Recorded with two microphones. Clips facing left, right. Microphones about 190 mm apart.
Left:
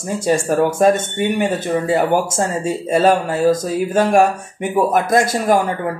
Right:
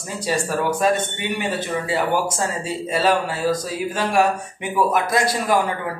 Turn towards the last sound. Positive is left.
turn(degrees=50)  # may be behind; listen again after turning